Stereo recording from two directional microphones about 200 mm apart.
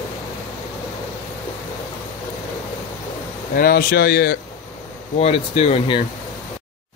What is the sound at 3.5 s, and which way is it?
Speech, 50° left (ahead or behind).